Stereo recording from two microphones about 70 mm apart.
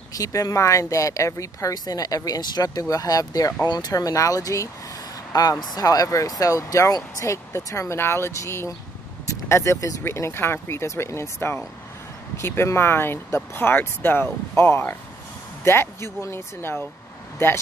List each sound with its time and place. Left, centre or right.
0.1 s speech: left
3.6 s speech: left
3.9 s speech: left
10.0 s speech: left